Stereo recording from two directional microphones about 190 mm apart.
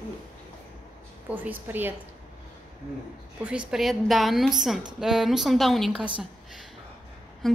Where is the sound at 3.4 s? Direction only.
5° right (ahead or behind).